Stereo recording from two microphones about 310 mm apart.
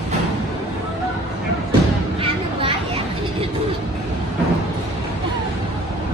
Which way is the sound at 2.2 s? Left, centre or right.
Centre.